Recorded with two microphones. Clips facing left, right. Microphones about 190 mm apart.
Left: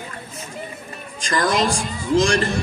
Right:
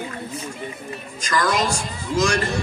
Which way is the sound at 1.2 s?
30° left (ahead or behind).